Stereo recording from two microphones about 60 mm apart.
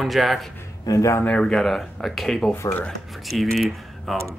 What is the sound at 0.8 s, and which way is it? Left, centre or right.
Speech, left.